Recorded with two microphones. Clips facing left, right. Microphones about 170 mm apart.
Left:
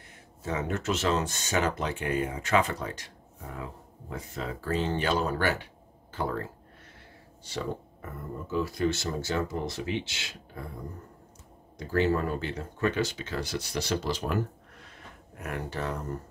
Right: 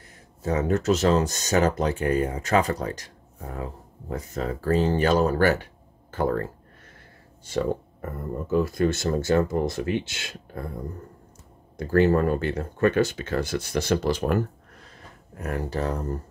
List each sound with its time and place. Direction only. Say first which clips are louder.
0.4 s speech: right 7 dB; 40° right (ahead or behind)
7.4 s speech: right 8 dB; 50° right (ahead or behind)
11.7 s speech: right 6 dB; 55° right (ahead or behind)
14.8 s a sound: right 2 dB; 40° right (ahead or behind)